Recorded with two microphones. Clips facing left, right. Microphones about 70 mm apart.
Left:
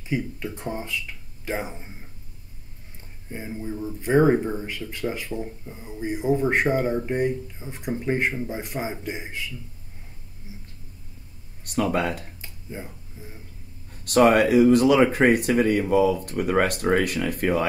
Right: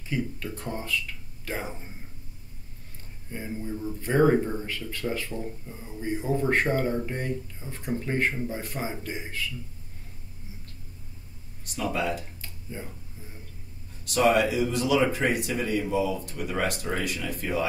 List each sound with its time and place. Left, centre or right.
0.1 s speech: centre
3.3 s speech: centre
11.6 s speech: left
12.4 s a sound: centre
14.0 s speech: left